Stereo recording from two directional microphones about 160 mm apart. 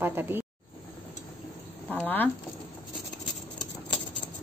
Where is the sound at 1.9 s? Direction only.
10° left (ahead or behind).